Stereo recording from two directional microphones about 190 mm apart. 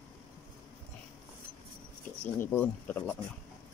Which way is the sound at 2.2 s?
10° left (ahead or behind).